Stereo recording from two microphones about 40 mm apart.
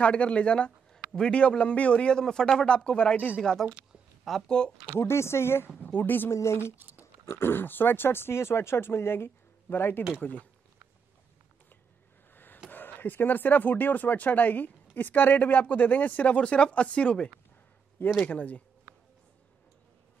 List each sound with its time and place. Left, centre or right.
0.0 s speech: left
3.3 s speech: centre
4.5 s speech: left
5.0 s speech: left
5.8 s speech: left
6.8 s a sound: right
7.2 s speech: left
12.6 s speech: left
18.2 s speech: left